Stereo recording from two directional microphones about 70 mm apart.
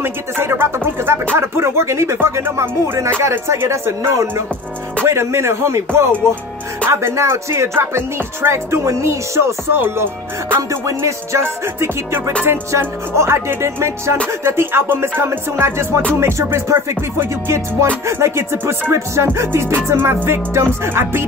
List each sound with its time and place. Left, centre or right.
0.0 s music: right